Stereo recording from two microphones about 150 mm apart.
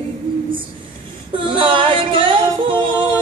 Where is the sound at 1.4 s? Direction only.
35° right (ahead or behind).